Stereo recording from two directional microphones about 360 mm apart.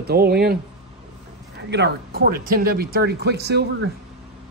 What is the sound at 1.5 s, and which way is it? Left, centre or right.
Speech, right.